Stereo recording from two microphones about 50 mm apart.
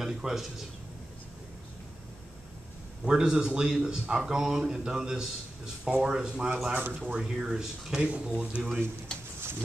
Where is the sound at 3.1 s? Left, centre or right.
Centre.